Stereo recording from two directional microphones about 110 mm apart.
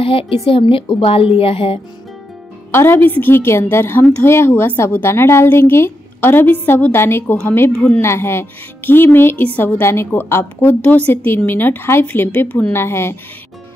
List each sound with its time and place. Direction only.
0.0 s a woman's voice: 55° left (ahead or behind)
2.7 s a woman's voice: 20° left (ahead or behind)